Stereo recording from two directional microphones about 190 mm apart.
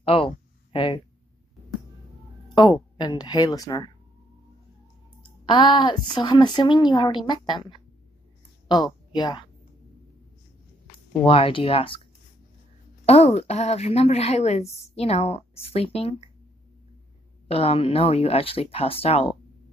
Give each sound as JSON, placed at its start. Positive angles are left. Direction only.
{"t": 0.0, "sound": "speech", "side_deg": 30}
{"t": 2.5, "sound": "a woman's voice", "side_deg": 25}
{"t": 5.4, "sound": "a woman's voice", "side_deg": 25}
{"t": 8.6, "sound": "speech", "side_deg": 20}
{"t": 11.2, "sound": "a woman's voice", "side_deg": 30}
{"t": 13.0, "sound": "a woman's voice", "side_deg": 35}
{"t": 17.5, "sound": "a woman's voice", "side_deg": 30}